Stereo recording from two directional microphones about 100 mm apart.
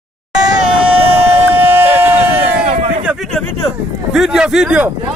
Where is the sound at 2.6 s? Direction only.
65° right (ahead or behind).